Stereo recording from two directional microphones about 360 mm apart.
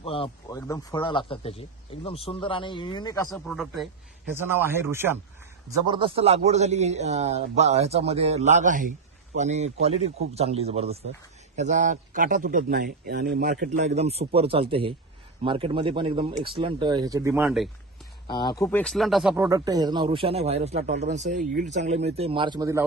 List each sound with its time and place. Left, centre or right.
0.0 s a man's voice: centre
18.2 s a man's voice: centre